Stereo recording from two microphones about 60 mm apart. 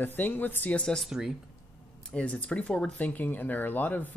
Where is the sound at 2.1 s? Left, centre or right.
Left.